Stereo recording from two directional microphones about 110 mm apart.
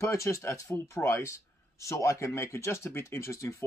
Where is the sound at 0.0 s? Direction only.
25° left (ahead or behind).